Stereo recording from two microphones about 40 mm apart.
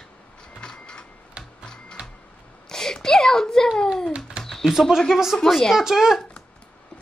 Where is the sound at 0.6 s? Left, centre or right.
Left.